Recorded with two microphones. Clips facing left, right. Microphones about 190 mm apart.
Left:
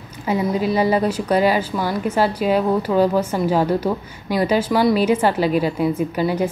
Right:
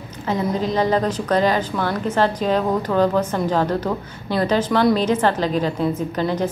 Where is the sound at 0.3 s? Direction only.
10° left (ahead or behind).